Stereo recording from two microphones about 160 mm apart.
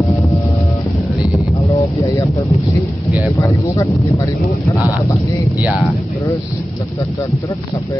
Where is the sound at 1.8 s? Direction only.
20° left (ahead or behind).